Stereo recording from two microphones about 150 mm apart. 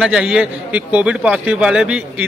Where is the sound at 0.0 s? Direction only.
5° right (ahead or behind).